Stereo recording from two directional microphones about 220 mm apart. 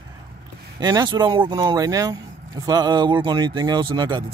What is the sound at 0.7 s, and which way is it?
Speech, 20° right (ahead or behind).